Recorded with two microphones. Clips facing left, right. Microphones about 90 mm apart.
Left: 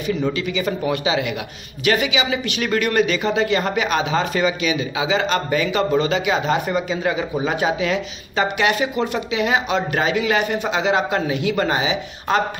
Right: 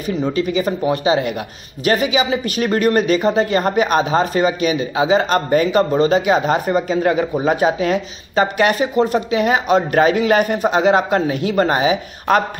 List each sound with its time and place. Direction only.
0.3 s speech: 40° right (ahead or behind)